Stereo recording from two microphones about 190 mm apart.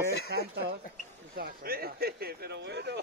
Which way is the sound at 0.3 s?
55° right (ahead or behind).